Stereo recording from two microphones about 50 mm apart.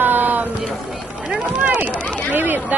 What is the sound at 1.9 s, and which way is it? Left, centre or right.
Speech, left.